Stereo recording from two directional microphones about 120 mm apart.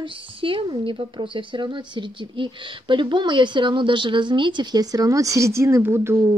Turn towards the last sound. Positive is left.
turn(degrees=-20)  # may be behind; listen again after turning